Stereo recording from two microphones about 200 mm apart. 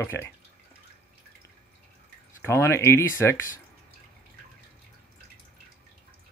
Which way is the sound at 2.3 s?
10° left (ahead or behind).